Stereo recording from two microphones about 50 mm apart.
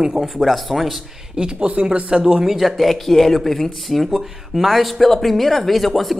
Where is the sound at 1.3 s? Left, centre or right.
Centre.